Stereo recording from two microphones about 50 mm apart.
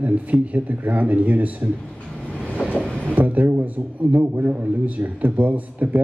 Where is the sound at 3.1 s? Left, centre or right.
Right.